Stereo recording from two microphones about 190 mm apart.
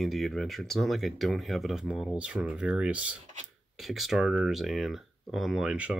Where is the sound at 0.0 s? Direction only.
Centre (ahead or behind).